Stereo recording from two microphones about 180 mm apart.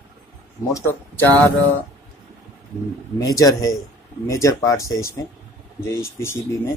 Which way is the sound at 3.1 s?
20° left (ahead or behind).